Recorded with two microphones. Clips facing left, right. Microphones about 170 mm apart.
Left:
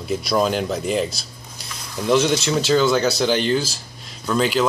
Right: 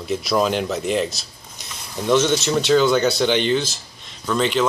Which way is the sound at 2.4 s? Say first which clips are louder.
Right 1 dB; centre (ahead or behind).